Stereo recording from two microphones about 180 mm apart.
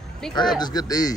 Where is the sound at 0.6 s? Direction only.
20° left (ahead or behind).